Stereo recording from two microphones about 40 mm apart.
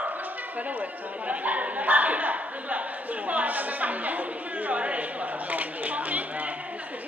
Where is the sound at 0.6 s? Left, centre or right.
Right.